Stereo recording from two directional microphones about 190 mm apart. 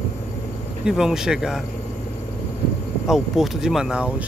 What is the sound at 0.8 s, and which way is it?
Speech, 5° right (ahead or behind).